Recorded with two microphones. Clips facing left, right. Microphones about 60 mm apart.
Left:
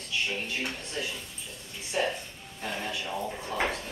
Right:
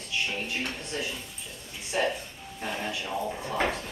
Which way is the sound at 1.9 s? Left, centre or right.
Centre.